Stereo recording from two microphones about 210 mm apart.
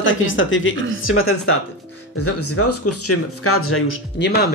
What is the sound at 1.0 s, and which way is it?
Speech, 80° left.